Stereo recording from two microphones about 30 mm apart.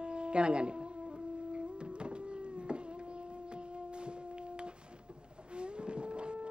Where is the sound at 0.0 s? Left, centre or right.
Right.